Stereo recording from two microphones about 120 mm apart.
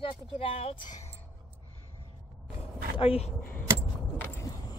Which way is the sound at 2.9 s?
55° left (ahead or behind).